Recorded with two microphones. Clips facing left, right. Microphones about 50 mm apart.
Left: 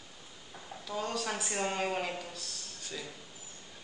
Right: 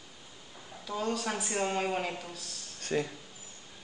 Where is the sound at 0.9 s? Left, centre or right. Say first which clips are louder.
Right 2 dB; centre.